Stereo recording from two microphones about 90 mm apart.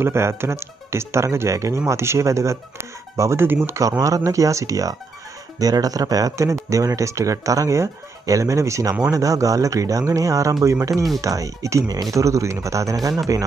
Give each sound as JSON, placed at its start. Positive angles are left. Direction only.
{"t": 0.0, "sound": "speech", "side_deg": -30}